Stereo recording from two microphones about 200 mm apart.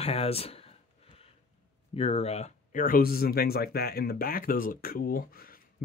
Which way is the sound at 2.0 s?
30° left (ahead or behind).